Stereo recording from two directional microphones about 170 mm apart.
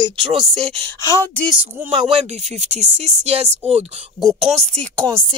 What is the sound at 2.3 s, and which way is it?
Speech, 40° right (ahead or behind).